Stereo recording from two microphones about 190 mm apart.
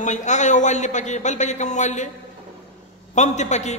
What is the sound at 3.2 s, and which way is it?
Speech, 40° left (ahead or behind).